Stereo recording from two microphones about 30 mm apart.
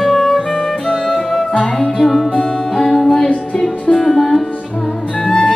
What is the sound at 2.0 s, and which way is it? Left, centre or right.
Music, centre.